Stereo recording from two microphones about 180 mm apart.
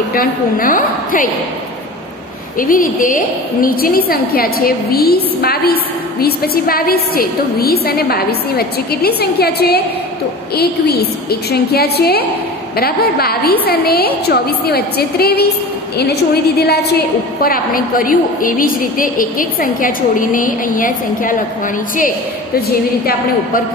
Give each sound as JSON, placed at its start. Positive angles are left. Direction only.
{"t": 0.1, "sound": "a woman's voice", "side_deg": 50}
{"t": 2.6, "sound": "a woman's voice", "side_deg": 50}